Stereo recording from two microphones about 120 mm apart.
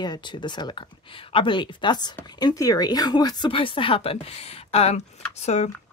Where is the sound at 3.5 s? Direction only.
50° left (ahead or behind).